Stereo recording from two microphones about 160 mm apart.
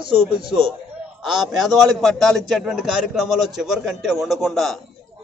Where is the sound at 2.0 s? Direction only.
Centre (ahead or behind).